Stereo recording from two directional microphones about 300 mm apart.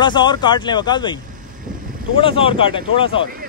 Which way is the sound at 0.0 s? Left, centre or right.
Centre.